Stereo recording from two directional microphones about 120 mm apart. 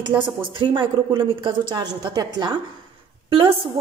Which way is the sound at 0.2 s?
45° right (ahead or behind).